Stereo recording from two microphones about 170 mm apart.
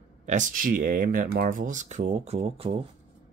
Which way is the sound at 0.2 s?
45° right (ahead or behind).